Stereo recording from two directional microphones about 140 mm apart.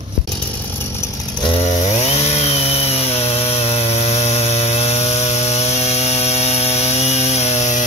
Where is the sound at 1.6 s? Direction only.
45° left (ahead or behind).